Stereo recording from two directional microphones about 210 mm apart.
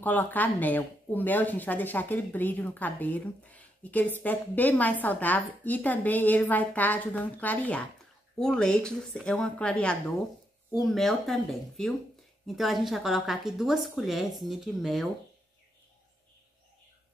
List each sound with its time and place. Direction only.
0.0 s a woman's voice: 10° left (ahead or behind)